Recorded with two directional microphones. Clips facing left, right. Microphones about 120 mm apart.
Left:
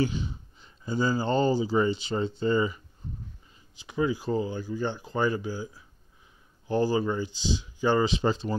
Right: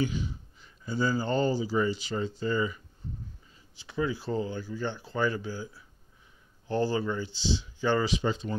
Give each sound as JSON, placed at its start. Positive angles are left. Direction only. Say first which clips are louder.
{"t": 0.0, "sound": "speech", "louder": "left 2 dB", "side_deg": 25}
{"t": 3.7, "sound": "speech", "louder": "left 3 dB", "side_deg": 15}
{"t": 8.1, "sound": "speech", "louder": "left 3 dB", "side_deg": 30}